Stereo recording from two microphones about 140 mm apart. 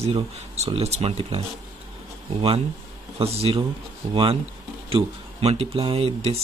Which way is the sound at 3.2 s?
45° right (ahead or behind).